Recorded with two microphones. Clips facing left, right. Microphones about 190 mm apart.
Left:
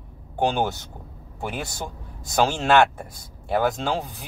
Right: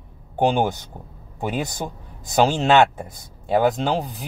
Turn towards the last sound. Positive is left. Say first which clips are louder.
# right 4 dB
turn(degrees=-15)  # may be behind; listen again after turning